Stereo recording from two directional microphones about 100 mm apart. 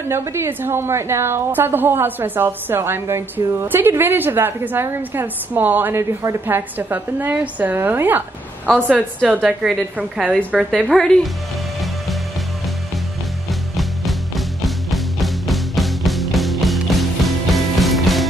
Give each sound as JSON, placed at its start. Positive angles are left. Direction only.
{"t": 0.1, "sound": "a woman's voice", "side_deg": -25}
{"t": 10.7, "sound": "a woman's voice", "side_deg": 0}
{"t": 13.5, "sound": "music", "side_deg": 0}